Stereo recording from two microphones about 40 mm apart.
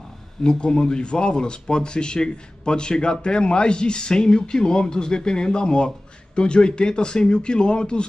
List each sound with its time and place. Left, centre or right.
0.4 s speech: left